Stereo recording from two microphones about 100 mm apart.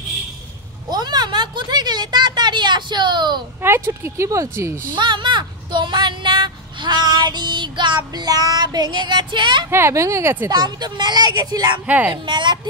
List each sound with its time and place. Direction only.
0.8 s a sound: 45° right (ahead or behind)
3.6 s speech: 25° right (ahead or behind)
4.9 s speech: 55° right (ahead or behind)
9.7 s speech: 25° right (ahead or behind)
10.5 s speech: 45° right (ahead or behind)
11.8 s speech: 15° right (ahead or behind)
12.1 s speech: 50° right (ahead or behind)